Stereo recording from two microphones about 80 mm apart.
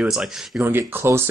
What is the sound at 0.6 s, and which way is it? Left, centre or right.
Speech, right.